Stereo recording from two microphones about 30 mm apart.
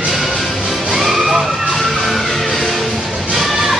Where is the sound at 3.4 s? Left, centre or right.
Centre.